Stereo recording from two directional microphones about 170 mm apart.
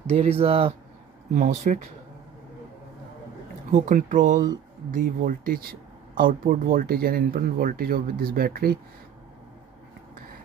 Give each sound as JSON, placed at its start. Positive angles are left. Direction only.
{"t": 0.1, "sound": "speech", "side_deg": -35}
{"t": 3.7, "sound": "speech", "side_deg": -50}